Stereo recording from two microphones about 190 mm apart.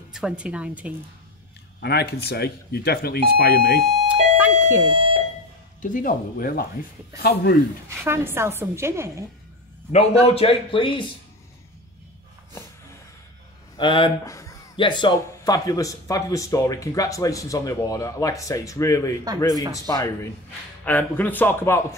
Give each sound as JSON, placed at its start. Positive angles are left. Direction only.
{"t": 0.1, "sound": "a woman's voice", "side_deg": -5}
{"t": 1.8, "sound": "speech", "side_deg": 60}
{"t": 4.1, "sound": "doorbell", "side_deg": -10}
{"t": 4.9, "sound": "alarm", "side_deg": -30}
{"t": 5.8, "sound": "speech", "side_deg": 45}
{"t": 7.9, "sound": "a woman's voice", "side_deg": -10}
{"t": 9.9, "sound": "speech", "side_deg": 30}
{"t": 13.7, "sound": "speech", "side_deg": 25}
{"t": 14.2, "sound": "speech", "side_deg": 15}